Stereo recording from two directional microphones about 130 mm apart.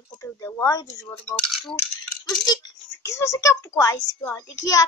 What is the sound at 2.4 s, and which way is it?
A child's voice, 30° left (ahead or behind).